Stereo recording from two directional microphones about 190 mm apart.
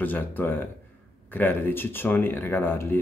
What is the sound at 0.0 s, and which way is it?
Speech, 10° left (ahead or behind).